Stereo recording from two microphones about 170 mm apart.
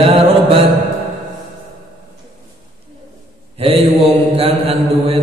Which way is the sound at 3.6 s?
35° right (ahead or behind).